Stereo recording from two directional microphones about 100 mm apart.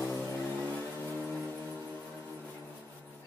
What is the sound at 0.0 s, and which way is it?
Music, 25° left (ahead or behind).